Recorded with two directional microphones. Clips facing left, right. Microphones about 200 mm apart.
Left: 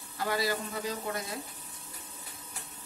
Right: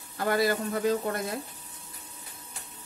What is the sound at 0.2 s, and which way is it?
Speech, 55° right (ahead or behind).